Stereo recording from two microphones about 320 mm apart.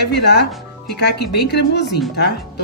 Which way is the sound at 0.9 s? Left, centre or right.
Left.